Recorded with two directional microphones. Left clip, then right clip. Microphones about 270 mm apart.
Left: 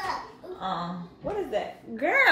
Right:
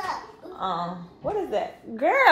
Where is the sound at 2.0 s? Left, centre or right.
Centre.